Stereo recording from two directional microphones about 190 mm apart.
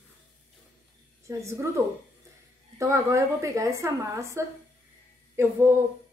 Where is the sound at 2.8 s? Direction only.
15° right (ahead or behind).